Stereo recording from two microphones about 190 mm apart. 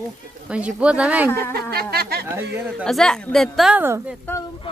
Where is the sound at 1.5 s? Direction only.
55° right (ahead or behind).